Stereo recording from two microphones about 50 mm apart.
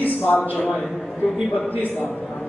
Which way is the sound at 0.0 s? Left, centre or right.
Left.